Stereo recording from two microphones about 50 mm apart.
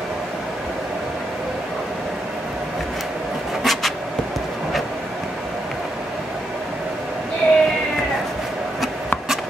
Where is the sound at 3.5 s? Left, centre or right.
Centre.